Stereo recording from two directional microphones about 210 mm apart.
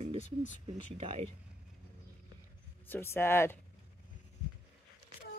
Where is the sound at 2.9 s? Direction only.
10° left (ahead or behind).